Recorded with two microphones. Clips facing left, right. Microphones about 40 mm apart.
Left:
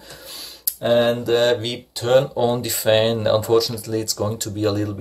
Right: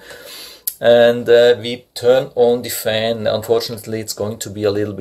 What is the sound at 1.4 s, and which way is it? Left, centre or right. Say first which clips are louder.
Speech: right 7 dB; right.